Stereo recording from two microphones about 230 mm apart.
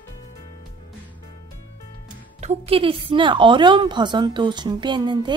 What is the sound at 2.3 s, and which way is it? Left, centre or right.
A woman's voice, right.